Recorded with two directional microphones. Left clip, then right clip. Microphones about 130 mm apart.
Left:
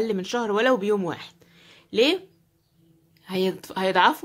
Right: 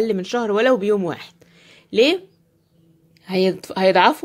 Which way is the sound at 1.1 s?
35° right (ahead or behind).